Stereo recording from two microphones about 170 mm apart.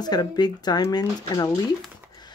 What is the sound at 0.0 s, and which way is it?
Speech, 25° left (ahead or behind).